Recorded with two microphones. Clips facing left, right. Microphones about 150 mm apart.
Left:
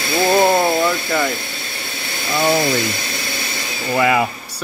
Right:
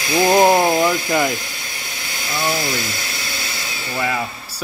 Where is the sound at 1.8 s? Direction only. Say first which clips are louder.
Left 3 dB; 60° left (ahead or behind).